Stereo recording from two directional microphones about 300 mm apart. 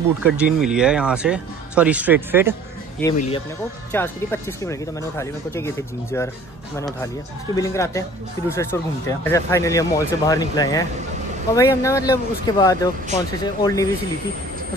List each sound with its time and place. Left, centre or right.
0.2 s speech: centre
3.2 s speech: centre
3.9 s speech: centre